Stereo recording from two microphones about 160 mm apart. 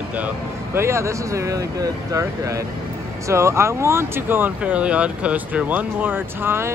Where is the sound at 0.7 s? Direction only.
15° right (ahead or behind).